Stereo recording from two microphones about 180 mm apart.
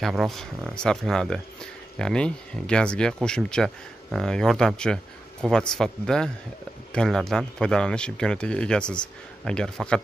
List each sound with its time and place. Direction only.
0.0 s speech: centre (ahead or behind)